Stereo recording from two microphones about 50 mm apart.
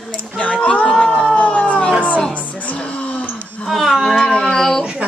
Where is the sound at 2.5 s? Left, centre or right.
Left.